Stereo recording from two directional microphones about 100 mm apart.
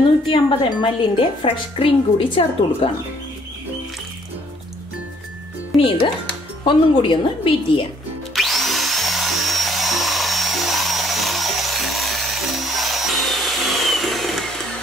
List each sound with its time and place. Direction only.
0.7 s speech: 55° left (ahead or behind)
5.8 s speech: 60° left (ahead or behind)
8.4 s drill: centre (ahead or behind)